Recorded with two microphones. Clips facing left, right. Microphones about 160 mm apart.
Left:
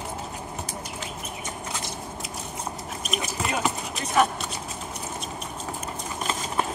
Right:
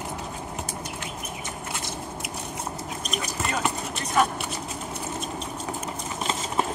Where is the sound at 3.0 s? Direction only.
5° left (ahead or behind).